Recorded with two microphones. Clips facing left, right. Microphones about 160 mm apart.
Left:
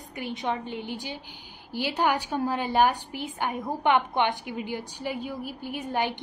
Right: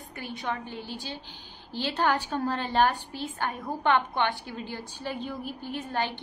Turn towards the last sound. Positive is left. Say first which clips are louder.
# left 2 dB
turn(degrees=15)  # may be behind; listen again after turning